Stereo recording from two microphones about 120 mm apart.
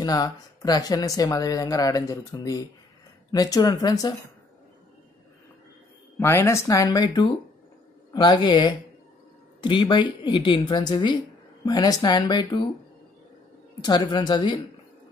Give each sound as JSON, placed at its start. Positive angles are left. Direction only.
{"t": 0.0, "sound": "speech", "side_deg": 30}
{"t": 6.1, "sound": "speech", "side_deg": 20}
{"t": 13.7, "sound": "speech", "side_deg": 35}